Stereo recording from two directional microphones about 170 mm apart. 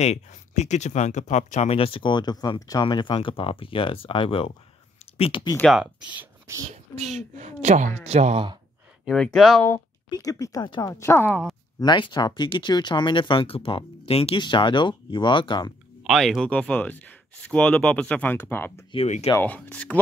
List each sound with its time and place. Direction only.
0.0 s speech: 40° left (ahead or behind)
5.6 s speech: centre (ahead or behind)
6.1 s whispering: 15° right (ahead or behind)
6.7 s a woman's voice: 40° right (ahead or behind)
9.0 s speech: centre (ahead or behind)
10.0 s speech: 20° left (ahead or behind)
11.8 s speech: 25° left (ahead or behind)
16.0 s speech: centre (ahead or behind)
19.0 s speech: 45° left (ahead or behind)
19.3 s speech: 10° left (ahead or behind)